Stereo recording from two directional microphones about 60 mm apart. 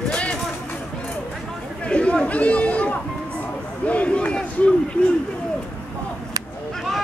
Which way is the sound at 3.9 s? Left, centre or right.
Left.